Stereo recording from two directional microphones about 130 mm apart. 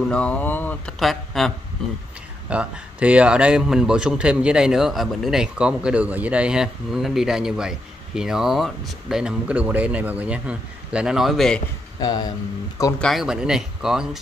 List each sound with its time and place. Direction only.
0.1 s speech: 10° left (ahead or behind)
0.9 s a man's voice: centre (ahead or behind)
2.5 s a man's voice: 10° right (ahead or behind)
12.0 s a sound: 30° left (ahead or behind)
13.0 s a man's voice: centre (ahead or behind)